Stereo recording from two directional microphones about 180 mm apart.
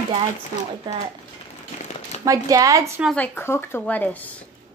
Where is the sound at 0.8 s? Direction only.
25° right (ahead or behind).